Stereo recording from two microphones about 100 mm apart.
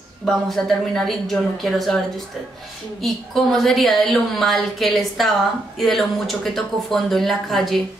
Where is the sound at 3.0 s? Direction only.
Centre (ahead or behind).